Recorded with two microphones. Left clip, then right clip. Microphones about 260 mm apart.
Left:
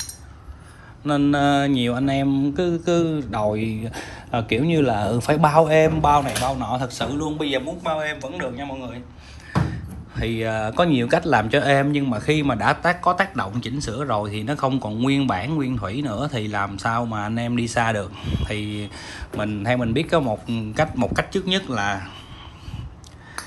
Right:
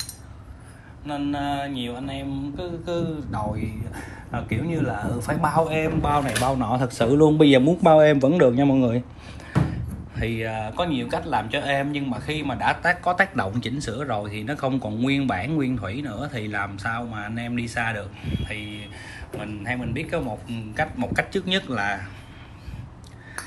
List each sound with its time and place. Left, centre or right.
1.0 s mantra: centre
2.8 s a man's voice: left
3.9 s mantra: left
5.3 s speech: left
5.8 s speech: centre
7.3 s speech: centre
9.7 s a sound: centre
11.0 s speech: left